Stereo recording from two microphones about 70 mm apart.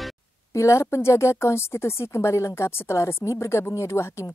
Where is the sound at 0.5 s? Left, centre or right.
Left.